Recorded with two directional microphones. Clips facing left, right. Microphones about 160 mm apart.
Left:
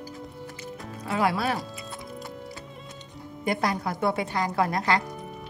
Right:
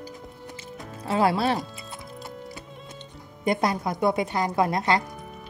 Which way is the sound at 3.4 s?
20° right (ahead or behind).